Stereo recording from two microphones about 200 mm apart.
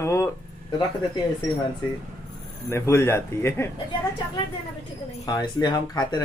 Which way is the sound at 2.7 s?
15° left (ahead or behind).